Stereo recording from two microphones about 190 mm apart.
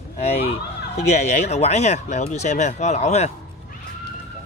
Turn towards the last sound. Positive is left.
turn(degrees=35)  # may be behind; listen again after turning